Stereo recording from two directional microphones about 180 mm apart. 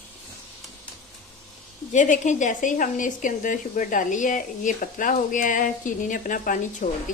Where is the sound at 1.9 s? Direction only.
45° left (ahead or behind).